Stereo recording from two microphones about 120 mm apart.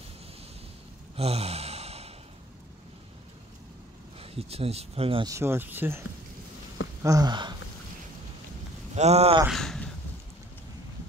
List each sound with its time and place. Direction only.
1.1 s a sound: 60° right (ahead or behind)
4.2 s speech: 55° right (ahead or behind)
5.2 s speech: 25° right (ahead or behind)
7.0 s a sound: 30° right (ahead or behind)
8.9 s speech: 65° right (ahead or behind)
9.5 s speech: 5° left (ahead or behind)